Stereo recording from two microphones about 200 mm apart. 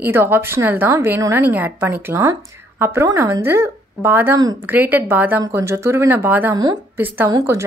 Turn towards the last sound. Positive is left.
turn(degrees=-15)  # may be behind; listen again after turning